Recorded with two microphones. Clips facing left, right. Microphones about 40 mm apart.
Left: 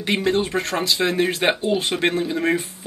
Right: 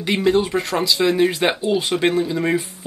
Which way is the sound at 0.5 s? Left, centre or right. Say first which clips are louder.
Right 2 dB; centre.